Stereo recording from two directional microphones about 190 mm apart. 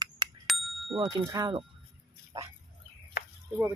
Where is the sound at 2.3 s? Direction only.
20° right (ahead or behind).